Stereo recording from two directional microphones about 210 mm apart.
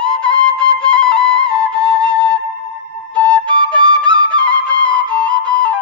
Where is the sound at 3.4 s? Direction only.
25° right (ahead or behind).